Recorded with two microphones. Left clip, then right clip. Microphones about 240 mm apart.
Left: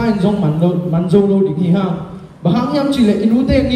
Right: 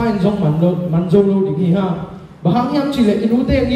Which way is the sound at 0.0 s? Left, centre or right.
Left.